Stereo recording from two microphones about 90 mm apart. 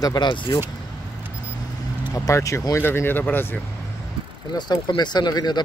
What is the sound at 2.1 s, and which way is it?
Speech, 35° left (ahead or behind).